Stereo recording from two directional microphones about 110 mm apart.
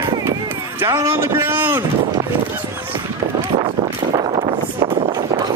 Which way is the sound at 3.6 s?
55° right (ahead or behind).